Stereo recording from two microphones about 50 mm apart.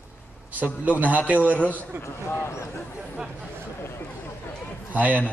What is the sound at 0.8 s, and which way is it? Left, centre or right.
Speech, right.